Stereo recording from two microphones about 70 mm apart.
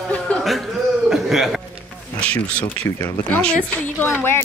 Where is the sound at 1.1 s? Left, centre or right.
Centre.